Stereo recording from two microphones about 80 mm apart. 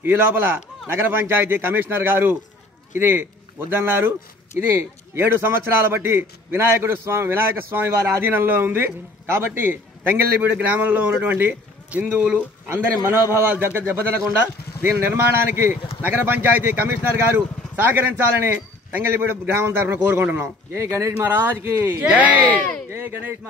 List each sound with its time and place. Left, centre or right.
0.0 s a man's voice: right
5.1 s a man's voice: right
13.0 s a man's voice: right
22.0 s a man's voice: centre